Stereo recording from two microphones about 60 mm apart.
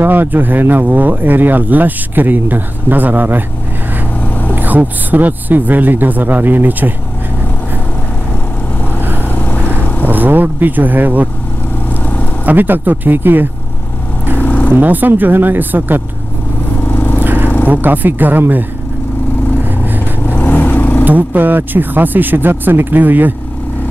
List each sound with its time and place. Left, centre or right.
0.0 s speech: right
4.2 s vehicle: left
4.6 s a man's voice: right
9.3 s vehicle: left
10.0 s speech: right
12.4 s speech: right
14.4 s vehicle: left
14.7 s speech: right
16.8 s scrape: left
17.2 s vehicle: right
17.6 s speech: right
20.2 s vehicle: left
21.0 s speech: right